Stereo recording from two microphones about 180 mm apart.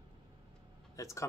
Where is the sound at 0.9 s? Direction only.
15° left (ahead or behind).